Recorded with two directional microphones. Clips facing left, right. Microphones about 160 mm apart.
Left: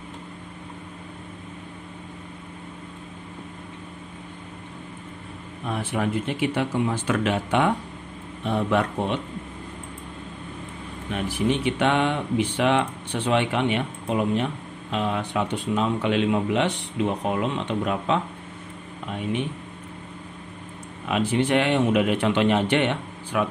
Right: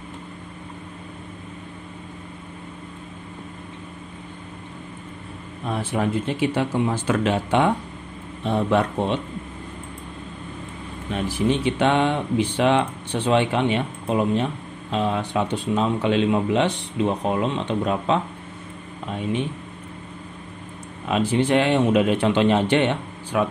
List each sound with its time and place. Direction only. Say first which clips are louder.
5.7 s speech: right 2 dB; 30° right (ahead or behind)
11.1 s speech: right 2 dB; 30° right (ahead or behind)
21.1 s speech: right 2 dB; 30° right (ahead or behind)